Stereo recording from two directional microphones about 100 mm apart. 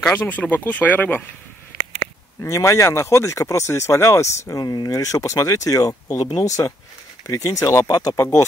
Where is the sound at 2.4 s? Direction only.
30° left (ahead or behind).